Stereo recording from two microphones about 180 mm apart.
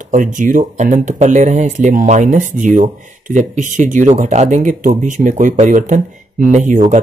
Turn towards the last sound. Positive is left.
turn(degrees=-45)  # may be behind; listen again after turning